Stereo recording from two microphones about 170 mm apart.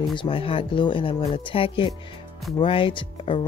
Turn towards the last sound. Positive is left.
turn(degrees=30)  # may be behind; listen again after turning